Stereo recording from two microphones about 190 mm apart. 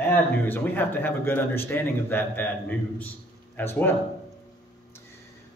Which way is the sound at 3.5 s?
10° left (ahead or behind).